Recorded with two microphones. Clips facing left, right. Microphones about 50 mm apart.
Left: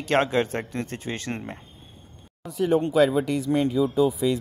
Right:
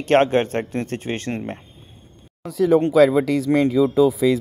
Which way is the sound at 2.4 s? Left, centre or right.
Right.